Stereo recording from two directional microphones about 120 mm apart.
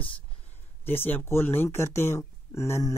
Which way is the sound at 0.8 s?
15° left (ahead or behind).